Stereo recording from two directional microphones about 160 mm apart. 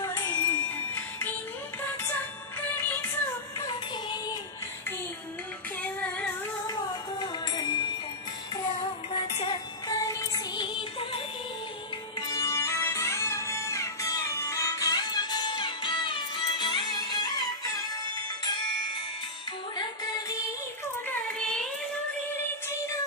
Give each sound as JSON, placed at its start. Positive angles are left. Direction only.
{"t": 0.0, "sound": "music", "side_deg": 15}
{"t": 3.5, "sound": "music", "side_deg": 25}
{"t": 5.8, "sound": "female singing", "side_deg": 10}
{"t": 6.7, "sound": "music", "side_deg": 25}
{"t": 9.1, "sound": "music", "side_deg": 35}
{"t": 9.8, "sound": "music", "side_deg": 20}
{"t": 12.2, "sound": "music", "side_deg": 20}
{"t": 19.8, "sound": "music", "side_deg": 25}
{"t": 21.1, "sound": "a sound", "side_deg": 5}